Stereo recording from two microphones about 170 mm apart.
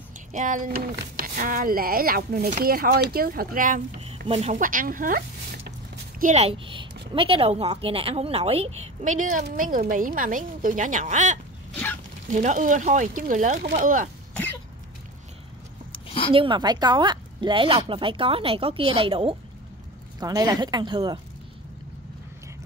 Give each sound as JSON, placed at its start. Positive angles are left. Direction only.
{"t": 0.3, "sound": "speech", "side_deg": -50}
{"t": 4.3, "sound": "a woman's voice", "side_deg": -40}
{"t": 16.3, "sound": "a woman's voice", "side_deg": -30}
{"t": 20.2, "sound": "speech", "side_deg": -20}